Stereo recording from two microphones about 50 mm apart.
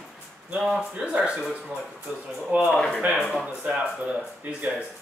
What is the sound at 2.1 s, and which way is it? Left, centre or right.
Speech, right.